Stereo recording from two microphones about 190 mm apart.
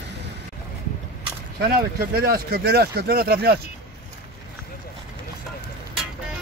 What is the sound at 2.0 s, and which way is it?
Speech, 50° right (ahead or behind).